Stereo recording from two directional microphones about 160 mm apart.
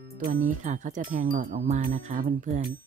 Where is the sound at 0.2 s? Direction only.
55° right (ahead or behind).